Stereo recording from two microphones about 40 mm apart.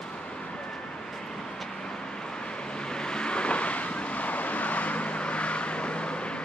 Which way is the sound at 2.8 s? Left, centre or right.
Left.